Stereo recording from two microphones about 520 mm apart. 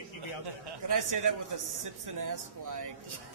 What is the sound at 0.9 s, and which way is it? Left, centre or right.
A man's voice, right.